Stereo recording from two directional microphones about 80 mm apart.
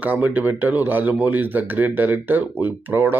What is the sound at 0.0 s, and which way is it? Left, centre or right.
Speech, right.